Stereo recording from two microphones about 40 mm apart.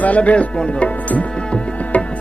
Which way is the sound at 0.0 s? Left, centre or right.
Left.